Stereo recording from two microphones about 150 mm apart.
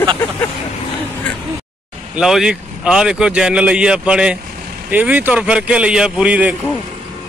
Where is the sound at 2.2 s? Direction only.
5° right (ahead or behind).